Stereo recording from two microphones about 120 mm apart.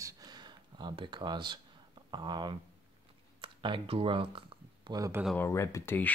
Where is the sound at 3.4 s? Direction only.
45° right (ahead or behind).